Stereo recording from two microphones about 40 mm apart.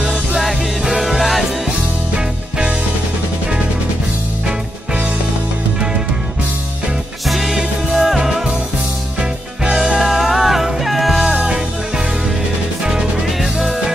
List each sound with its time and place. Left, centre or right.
0.0 s music: centre
0.4 s music: centre
7.2 s music: centre
8.2 s music: centre
9.7 s music: centre
11.3 s music: right
13.4 s music: centre